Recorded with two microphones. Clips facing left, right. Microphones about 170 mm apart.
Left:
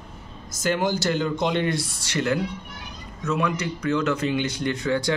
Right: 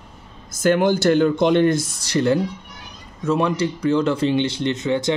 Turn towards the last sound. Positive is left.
turn(degrees=-20)  # may be behind; listen again after turning